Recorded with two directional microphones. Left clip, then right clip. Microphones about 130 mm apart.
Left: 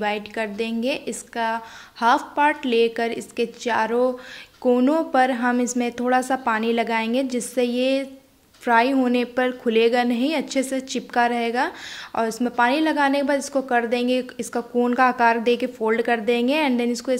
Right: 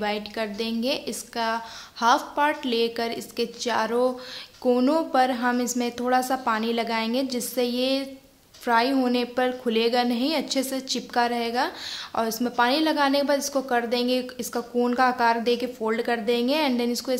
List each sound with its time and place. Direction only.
0.0 s a woman's voice: 25° left (ahead or behind)